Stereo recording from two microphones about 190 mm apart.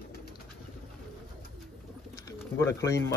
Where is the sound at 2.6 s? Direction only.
15° left (ahead or behind).